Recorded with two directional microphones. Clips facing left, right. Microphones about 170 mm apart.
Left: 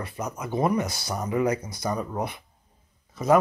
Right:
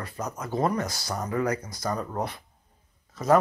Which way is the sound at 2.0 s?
10° left (ahead or behind).